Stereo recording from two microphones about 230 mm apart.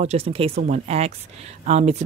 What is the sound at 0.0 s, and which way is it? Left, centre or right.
Speech, right.